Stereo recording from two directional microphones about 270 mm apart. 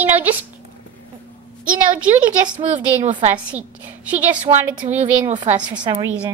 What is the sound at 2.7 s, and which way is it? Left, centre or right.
Speech, right.